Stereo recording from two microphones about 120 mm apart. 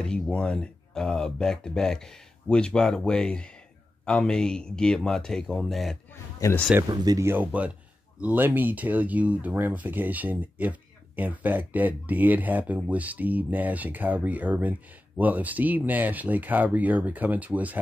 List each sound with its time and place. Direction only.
0.0 s speech: 10° left (ahead or behind)
6.4 s a man's voice: 25° left (ahead or behind)
6.9 s speech: 30° right (ahead or behind)
7.2 s speech: 15° right (ahead or behind)